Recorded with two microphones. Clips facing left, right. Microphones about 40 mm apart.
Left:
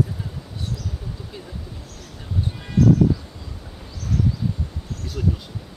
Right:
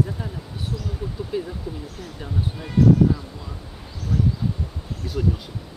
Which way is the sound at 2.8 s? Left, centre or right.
Right.